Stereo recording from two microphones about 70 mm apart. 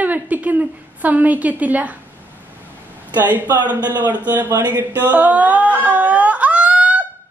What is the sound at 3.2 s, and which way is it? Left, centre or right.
A man's voice, right.